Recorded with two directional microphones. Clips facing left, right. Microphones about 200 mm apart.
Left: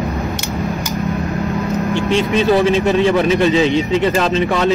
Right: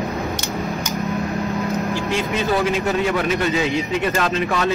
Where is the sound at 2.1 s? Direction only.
25° left (ahead or behind).